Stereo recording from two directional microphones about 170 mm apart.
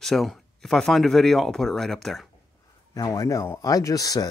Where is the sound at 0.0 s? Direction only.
Centre (ahead or behind).